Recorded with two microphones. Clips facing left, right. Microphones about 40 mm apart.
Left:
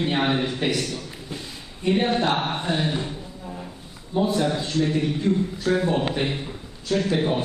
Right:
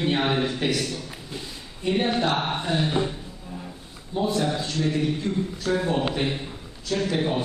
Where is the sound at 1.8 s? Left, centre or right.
Centre.